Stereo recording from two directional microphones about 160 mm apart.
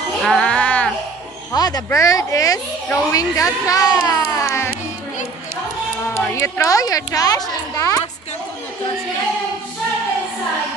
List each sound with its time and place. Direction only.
0.2 s music: centre (ahead or behind)
1.5 s speech: 25° left (ahead or behind)
6.1 s speech: 15° left (ahead or behind)